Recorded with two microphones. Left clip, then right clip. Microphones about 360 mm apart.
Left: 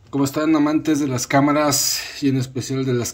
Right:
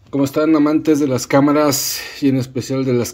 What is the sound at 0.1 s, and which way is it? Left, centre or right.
Speech, centre.